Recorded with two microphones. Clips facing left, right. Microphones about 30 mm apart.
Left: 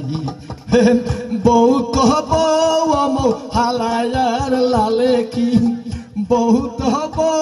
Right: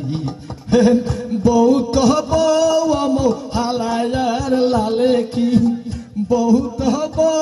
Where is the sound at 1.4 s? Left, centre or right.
Centre.